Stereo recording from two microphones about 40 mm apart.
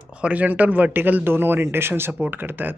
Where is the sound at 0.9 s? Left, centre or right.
Right.